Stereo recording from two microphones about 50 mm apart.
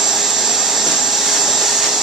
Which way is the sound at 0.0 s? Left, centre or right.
Centre.